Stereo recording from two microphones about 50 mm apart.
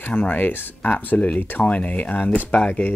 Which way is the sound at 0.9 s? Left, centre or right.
Left.